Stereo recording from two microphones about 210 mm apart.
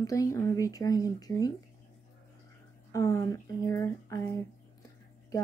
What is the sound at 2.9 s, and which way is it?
Speech, 15° left (ahead or behind).